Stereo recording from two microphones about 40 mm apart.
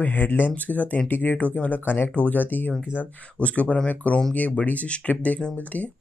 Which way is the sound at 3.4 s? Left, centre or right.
Left.